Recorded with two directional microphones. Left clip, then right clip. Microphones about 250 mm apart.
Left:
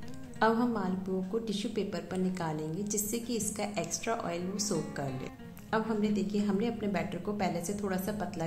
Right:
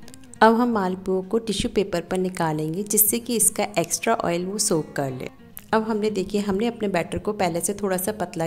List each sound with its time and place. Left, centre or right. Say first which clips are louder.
0.4 s a woman's voice: right 11 dB; right